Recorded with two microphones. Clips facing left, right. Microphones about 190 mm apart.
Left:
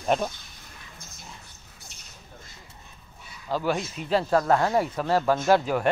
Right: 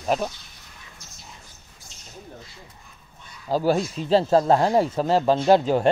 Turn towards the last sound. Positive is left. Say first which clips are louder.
# right 4 dB
turn(degrees=-25)  # may be behind; listen again after turning